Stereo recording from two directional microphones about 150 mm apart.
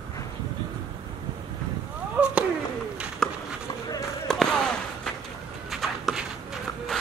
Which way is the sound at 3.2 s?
5° left (ahead or behind).